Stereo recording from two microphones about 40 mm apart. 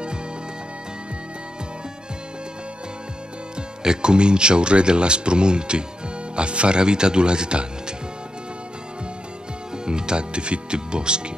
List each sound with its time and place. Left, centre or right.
3.8 s speech: right
9.8 s speech: right